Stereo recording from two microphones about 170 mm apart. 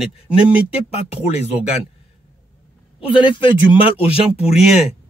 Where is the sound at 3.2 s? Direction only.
30° left (ahead or behind).